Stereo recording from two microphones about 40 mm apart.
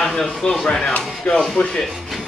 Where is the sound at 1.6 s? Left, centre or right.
Left.